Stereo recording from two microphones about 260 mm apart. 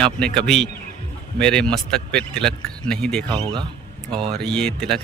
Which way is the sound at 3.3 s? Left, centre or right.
Centre.